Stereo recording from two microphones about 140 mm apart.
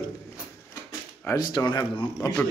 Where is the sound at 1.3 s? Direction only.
30° left (ahead or behind).